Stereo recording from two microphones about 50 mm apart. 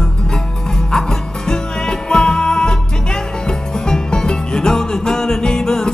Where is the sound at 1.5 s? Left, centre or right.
Centre.